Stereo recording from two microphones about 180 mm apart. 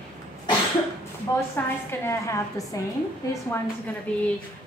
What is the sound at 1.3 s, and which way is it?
A woman's voice, 20° left (ahead or behind).